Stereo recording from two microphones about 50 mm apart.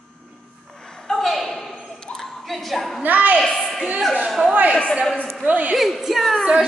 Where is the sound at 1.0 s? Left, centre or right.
Centre.